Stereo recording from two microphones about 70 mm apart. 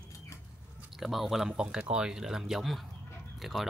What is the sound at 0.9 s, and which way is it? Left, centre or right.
Speech, centre.